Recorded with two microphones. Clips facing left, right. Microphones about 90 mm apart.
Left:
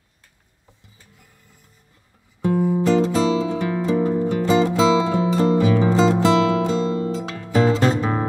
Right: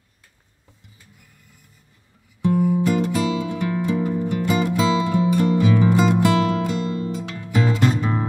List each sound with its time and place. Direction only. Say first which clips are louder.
2.5 s music: left 2 dB; 25° left (ahead or behind)